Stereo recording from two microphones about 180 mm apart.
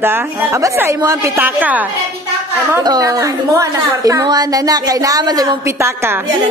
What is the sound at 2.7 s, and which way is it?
A woman's voice, 20° right (ahead or behind).